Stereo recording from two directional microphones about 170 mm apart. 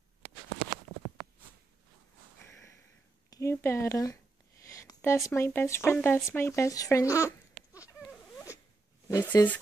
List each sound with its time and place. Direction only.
3.3 s speech: 20° left (ahead or behind)
9.1 s speech: 20° left (ahead or behind)